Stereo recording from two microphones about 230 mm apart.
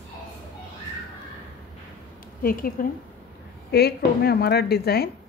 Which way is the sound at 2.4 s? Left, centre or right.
Left.